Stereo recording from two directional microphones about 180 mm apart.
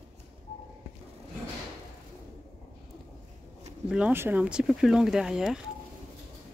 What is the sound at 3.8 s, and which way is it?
Speech, 5° right (ahead or behind).